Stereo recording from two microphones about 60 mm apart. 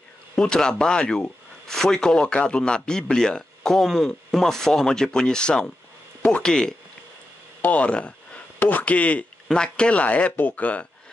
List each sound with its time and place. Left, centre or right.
0.4 s a man's voice: centre